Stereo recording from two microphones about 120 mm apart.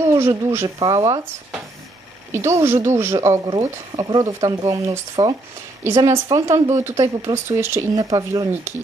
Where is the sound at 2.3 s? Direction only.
20° right (ahead or behind).